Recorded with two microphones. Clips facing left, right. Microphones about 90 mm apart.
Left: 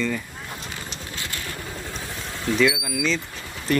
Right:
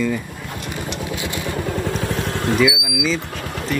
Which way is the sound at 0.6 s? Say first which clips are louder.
Right 9 dB; 65° right (ahead or behind).